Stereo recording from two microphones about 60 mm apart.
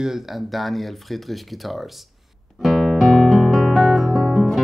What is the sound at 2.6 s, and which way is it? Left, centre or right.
Music, centre.